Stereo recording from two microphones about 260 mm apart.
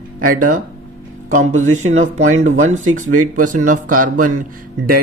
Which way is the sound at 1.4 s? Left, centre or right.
Right.